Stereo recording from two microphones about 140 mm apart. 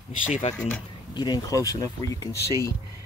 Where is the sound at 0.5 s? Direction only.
10° left (ahead or behind).